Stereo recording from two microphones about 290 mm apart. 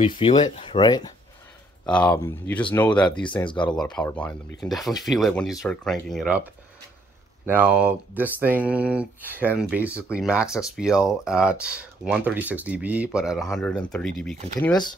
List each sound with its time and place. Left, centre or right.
0.0 s speech: centre
1.9 s speech: centre
3.1 s speech: centre
3.7 s speech: centre